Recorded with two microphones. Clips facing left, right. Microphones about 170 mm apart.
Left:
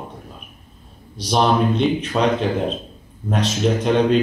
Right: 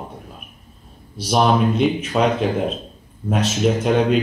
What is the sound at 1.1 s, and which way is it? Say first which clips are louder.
Speech: right 1 dB; 5° right (ahead or behind).